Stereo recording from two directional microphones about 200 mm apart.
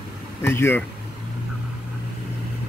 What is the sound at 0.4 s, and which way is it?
Speech, 10° left (ahead or behind).